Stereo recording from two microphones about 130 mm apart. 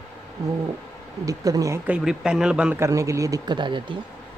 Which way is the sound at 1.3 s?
25° right (ahead or behind).